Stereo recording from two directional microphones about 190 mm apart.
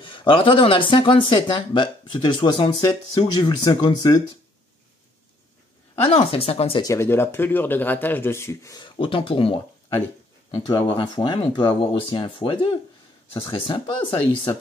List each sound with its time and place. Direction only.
0.0 s speech: 25° left (ahead or behind)
6.0 s speech: 30° left (ahead or behind)
6.8 s speech: 15° left (ahead or behind)
10.8 s speech: 30° left (ahead or behind)